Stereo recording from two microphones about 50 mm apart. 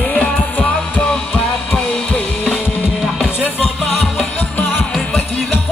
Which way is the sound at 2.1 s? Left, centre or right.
Left.